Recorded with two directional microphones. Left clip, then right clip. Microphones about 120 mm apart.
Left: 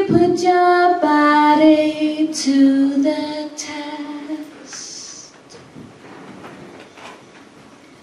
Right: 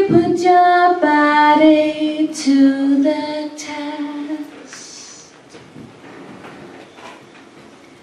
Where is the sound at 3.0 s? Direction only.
15° left (ahead or behind).